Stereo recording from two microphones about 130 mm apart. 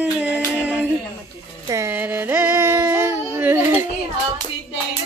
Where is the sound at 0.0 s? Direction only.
10° right (ahead or behind).